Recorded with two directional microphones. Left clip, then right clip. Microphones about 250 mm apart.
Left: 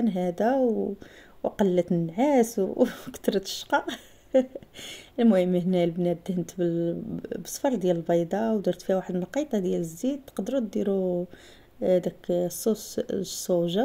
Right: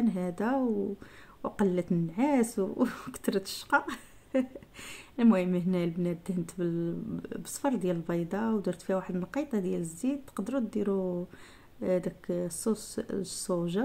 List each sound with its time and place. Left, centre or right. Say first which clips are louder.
0.0 s speech: left 6 dB; centre
1.6 s a woman's voice: left 5 dB; centre